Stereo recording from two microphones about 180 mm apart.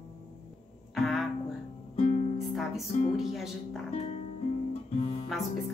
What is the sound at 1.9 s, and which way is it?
Music, 40° left (ahead or behind).